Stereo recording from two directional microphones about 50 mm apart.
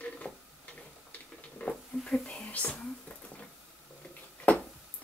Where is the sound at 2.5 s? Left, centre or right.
Left.